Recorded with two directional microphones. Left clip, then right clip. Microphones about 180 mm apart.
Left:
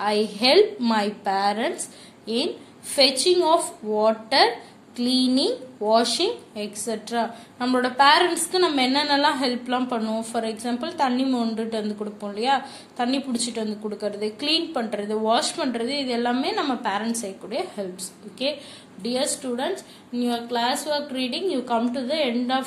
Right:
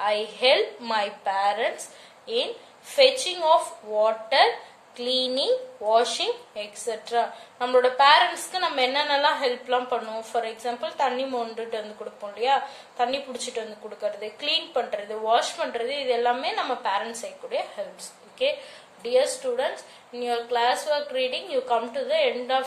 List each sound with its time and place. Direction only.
0.0 s a woman's voice: 40° left (ahead or behind)
3.0 s a woman's voice: 45° left (ahead or behind)
19.0 s a woman's voice: 40° left (ahead or behind)